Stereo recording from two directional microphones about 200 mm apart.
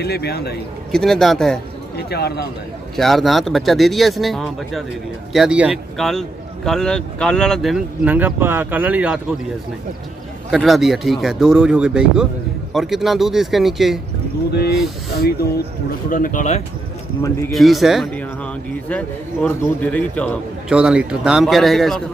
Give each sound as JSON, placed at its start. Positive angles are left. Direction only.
{"t": 0.0, "sound": "a man's voice", "side_deg": 55}
{"t": 0.9, "sound": "a man's voice", "side_deg": 0}
{"t": 2.0, "sound": "a man's voice", "side_deg": 55}
{"t": 3.0, "sound": "a man's voice", "side_deg": 0}
{"t": 10.5, "sound": "a man's voice", "side_deg": 0}
{"t": 14.5, "sound": "speech", "side_deg": 55}
{"t": 16.1, "sound": "speech", "side_deg": 40}
{"t": 17.5, "sound": "a man's voice", "side_deg": 0}
{"t": 20.6, "sound": "a man's voice", "side_deg": -5}